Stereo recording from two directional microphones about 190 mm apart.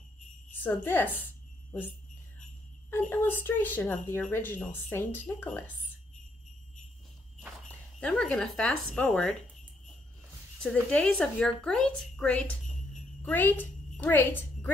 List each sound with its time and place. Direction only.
0.6 s a woman's voice: 10° left (ahead or behind)
2.9 s speech: 10° left (ahead or behind)
7.3 s speech: centre (ahead or behind)
10.6 s a woman's voice: 5° left (ahead or behind)